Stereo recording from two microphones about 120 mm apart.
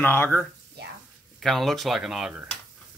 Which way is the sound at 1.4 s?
Centre (ahead or behind).